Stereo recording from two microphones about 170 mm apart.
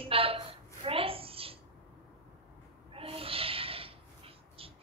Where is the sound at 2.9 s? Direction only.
35° right (ahead or behind).